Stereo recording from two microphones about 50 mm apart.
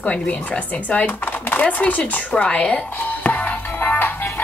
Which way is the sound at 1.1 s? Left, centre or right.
Left.